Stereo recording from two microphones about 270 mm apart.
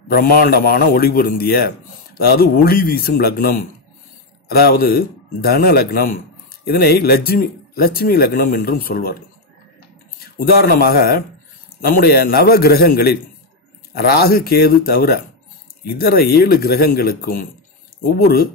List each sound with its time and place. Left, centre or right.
0.1 s speech: left
10.2 s speech: left